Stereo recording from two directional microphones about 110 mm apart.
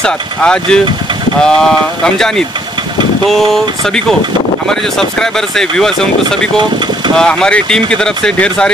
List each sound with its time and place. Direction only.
0.0 s speech: 5° left (ahead or behind)
7.2 s speech: 5° left (ahead or behind)